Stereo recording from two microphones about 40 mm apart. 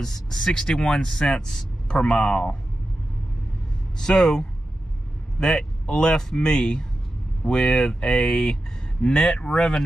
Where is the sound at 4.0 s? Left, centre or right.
Centre.